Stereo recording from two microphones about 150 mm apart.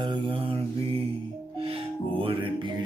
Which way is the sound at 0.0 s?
35° right (ahead or behind).